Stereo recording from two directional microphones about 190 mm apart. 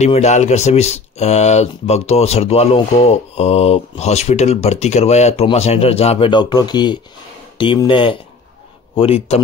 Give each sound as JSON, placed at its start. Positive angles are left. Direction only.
{"t": 0.0, "sound": "speech", "side_deg": 35}